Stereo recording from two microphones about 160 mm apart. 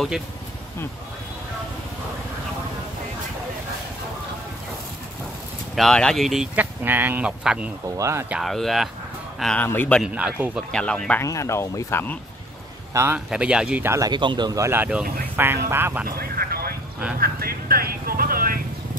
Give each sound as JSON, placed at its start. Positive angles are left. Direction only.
{"t": 5.8, "sound": "speech", "side_deg": 5}
{"t": 8.4, "sound": "speech", "side_deg": 0}
{"t": 10.0, "sound": "speech", "side_deg": -5}
{"t": 10.7, "sound": "speech", "side_deg": 5}
{"t": 11.2, "sound": "speech", "side_deg": 20}
{"t": 12.9, "sound": "speech", "side_deg": -15}
{"t": 13.3, "sound": "speech", "side_deg": -5}
{"t": 16.2, "sound": "vehicle", "side_deg": -75}